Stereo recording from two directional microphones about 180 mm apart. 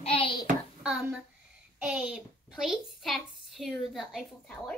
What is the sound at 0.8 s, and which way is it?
A child's voice, 5° right (ahead or behind).